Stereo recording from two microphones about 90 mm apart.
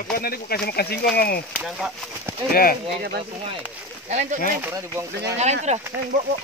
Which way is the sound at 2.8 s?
90° right.